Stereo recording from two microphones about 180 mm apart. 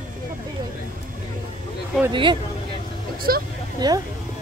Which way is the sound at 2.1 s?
25° right (ahead or behind).